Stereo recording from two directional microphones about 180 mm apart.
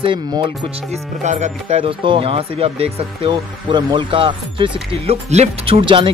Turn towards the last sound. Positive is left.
turn(degrees=-30)  # may be behind; listen again after turning